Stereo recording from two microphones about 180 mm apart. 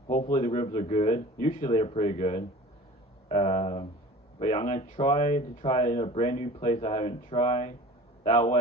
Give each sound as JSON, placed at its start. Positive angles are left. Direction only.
{"t": 0.2, "sound": "speech", "side_deg": 40}